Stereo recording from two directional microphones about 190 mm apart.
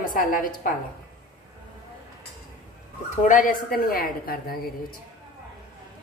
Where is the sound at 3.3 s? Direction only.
45° left (ahead or behind).